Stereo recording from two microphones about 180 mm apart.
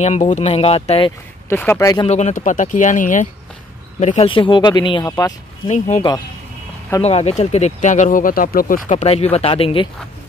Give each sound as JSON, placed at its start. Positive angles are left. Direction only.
{"t": 0.0, "sound": "speech", "side_deg": 40}
{"t": 1.5, "sound": "speech", "side_deg": 15}
{"t": 2.0, "sound": "speech", "side_deg": 40}
{"t": 5.7, "sound": "speech", "side_deg": 40}